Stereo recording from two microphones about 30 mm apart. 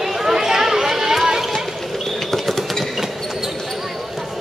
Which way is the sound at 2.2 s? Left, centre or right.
Centre.